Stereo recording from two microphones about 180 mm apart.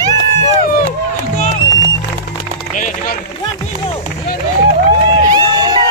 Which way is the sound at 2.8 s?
45° left (ahead or behind).